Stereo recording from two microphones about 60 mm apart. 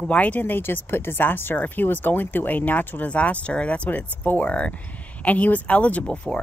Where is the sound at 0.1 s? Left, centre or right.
Left.